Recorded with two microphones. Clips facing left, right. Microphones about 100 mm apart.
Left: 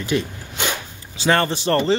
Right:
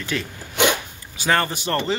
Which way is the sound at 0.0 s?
20° left (ahead or behind).